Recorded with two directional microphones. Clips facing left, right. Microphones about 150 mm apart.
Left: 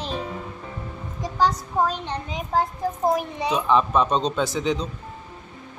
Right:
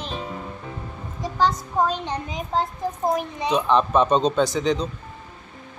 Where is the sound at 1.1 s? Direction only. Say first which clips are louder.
Even; 10° left (ahead or behind).